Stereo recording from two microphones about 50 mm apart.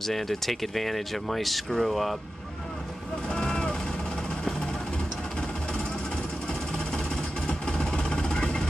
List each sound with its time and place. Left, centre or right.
0.0 s speech: centre
3.3 s vehicle: centre
6.7 s vehicle: centre